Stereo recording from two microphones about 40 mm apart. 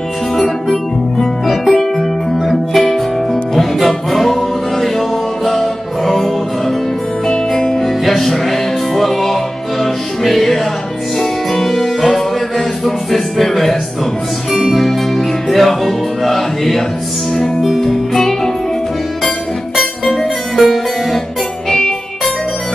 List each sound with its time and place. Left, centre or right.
0.4 s music: centre
7.2 s music: centre
7.8 s music: centre
20.1 s music: centre